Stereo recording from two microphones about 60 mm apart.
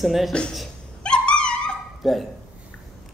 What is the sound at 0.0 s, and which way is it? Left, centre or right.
Speech, centre.